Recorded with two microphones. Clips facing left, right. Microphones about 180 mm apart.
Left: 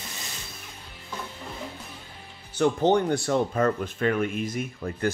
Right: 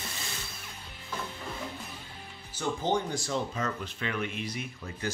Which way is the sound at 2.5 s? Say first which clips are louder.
Left 8 dB; 65° left (ahead or behind).